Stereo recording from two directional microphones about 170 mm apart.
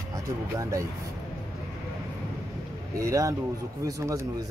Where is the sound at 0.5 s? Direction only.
20° right (ahead or behind).